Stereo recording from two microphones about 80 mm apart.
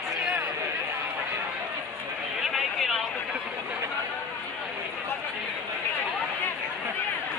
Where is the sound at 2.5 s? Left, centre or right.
Centre.